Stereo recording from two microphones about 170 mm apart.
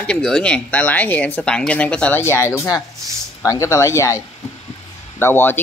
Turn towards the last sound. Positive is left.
turn(degrees=10)  # may be behind; listen again after turning